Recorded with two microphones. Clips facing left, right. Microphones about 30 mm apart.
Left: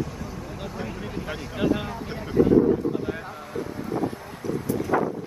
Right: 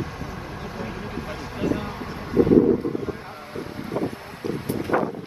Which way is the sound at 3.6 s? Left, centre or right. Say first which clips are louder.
Even; right.